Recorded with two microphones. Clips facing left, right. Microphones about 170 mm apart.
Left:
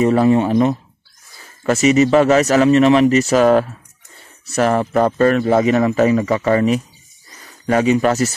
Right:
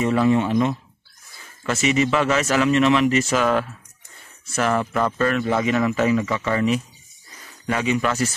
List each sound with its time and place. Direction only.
0.0 s speech: 40° left (ahead or behind)